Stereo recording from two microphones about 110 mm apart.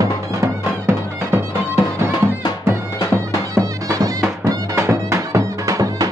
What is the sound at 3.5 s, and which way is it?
Music, 30° right (ahead or behind).